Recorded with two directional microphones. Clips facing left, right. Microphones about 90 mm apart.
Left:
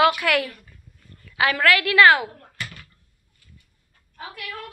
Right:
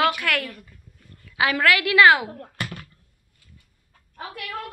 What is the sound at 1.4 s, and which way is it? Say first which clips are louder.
Speech: left 1 dB; 15° right (ahead or behind).